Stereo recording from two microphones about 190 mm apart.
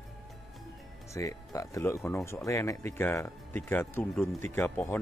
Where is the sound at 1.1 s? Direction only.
15° left (ahead or behind).